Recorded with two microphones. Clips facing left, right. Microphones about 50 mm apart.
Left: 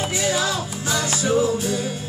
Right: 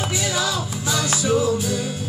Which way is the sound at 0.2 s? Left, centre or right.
Left.